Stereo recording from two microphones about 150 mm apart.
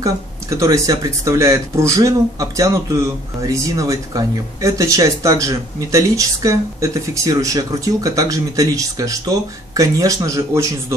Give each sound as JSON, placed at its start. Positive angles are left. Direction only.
{"t": 0.0, "sound": "speech", "side_deg": -20}